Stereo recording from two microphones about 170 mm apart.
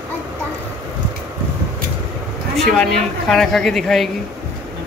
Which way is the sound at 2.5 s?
Centre (ahead or behind).